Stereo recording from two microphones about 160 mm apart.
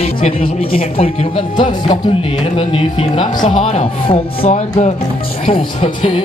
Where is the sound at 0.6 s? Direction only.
35° left (ahead or behind).